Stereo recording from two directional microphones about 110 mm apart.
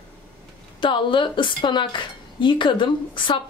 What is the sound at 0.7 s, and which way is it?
A woman's voice, 50° left (ahead or behind).